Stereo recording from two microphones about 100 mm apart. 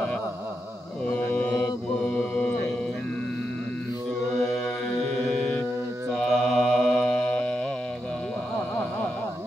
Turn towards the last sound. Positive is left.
turn(degrees=10)  # may be behind; listen again after turning